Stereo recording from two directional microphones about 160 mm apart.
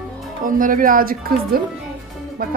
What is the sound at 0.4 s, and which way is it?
A woman's voice, 60° right (ahead or behind).